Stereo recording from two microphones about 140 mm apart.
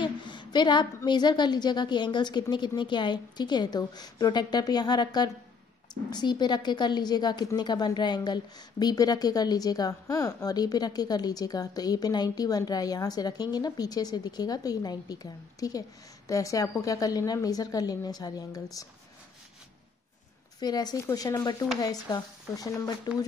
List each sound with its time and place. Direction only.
0.0 s a sound: 35° left (ahead or behind)
1.0 s a woman's voice: 30° left (ahead or behind)
20.6 s a woman's voice: 30° left (ahead or behind)